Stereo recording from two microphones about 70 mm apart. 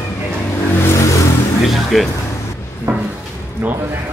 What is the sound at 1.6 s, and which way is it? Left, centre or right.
Speech, centre.